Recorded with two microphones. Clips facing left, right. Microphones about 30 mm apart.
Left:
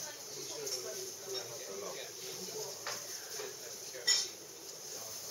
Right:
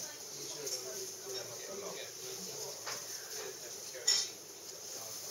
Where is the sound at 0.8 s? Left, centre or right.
Centre.